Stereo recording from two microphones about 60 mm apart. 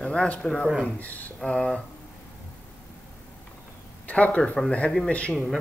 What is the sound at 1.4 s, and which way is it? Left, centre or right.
Speech, centre.